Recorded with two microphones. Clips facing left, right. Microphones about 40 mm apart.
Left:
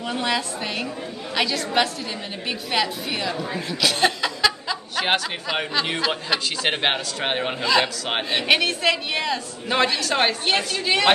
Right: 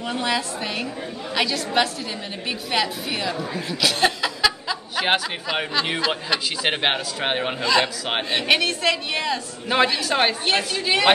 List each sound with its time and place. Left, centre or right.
0.0 s speech: centre